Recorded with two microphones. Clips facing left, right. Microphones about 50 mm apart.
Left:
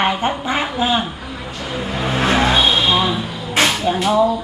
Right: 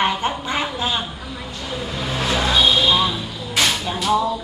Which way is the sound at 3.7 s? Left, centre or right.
Centre.